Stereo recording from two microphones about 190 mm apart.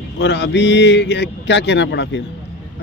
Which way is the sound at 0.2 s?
65° left (ahead or behind).